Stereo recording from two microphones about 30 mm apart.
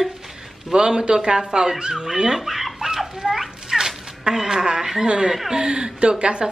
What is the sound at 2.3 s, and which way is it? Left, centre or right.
Chicken, centre.